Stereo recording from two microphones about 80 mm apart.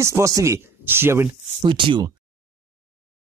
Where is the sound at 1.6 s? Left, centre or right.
Right.